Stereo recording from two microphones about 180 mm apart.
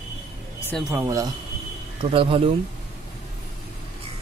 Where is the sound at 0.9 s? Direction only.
15° right (ahead or behind).